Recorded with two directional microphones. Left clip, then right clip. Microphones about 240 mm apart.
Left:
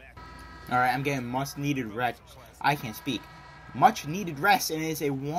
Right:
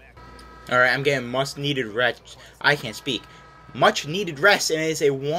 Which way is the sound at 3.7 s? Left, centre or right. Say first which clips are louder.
Right 3 dB; left.